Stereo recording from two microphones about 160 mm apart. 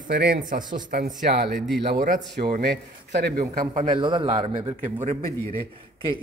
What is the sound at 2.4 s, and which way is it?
Speech, 80° right.